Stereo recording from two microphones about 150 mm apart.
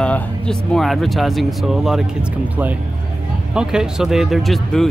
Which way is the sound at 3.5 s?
5° right (ahead or behind).